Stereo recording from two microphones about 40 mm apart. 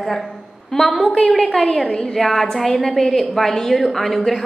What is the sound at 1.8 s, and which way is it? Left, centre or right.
Speech, centre.